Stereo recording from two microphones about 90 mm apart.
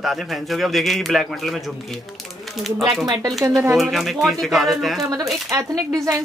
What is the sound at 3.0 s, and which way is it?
Speech, 45° right (ahead or behind).